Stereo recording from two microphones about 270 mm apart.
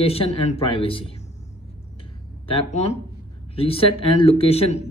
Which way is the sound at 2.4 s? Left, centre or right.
Left.